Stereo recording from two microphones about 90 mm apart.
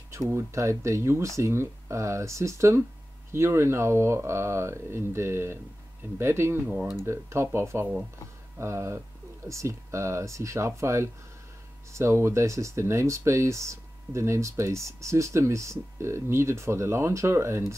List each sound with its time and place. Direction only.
0.1 s speech: 30° right (ahead or behind)
7.1 s speech: 30° right (ahead or behind)